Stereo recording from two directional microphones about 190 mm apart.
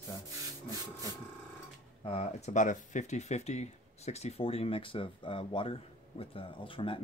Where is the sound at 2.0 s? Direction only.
30° left (ahead or behind).